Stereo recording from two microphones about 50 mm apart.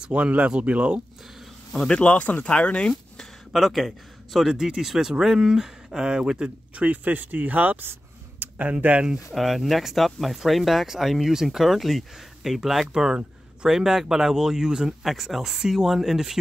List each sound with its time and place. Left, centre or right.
0.0 s speech: right
1.7 s a man's voice: centre
2.0 s speech: left
2.9 s speech: centre; by 7.8 s right
7.8 s a sound: right
8.5 s speech: right
9.3 s speech: centre